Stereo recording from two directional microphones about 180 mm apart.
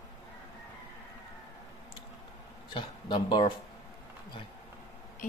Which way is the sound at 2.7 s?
25° left (ahead or behind).